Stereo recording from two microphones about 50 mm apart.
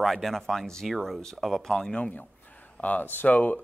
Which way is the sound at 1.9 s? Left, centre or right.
Left.